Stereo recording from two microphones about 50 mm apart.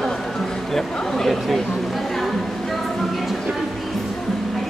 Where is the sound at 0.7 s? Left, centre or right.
Centre.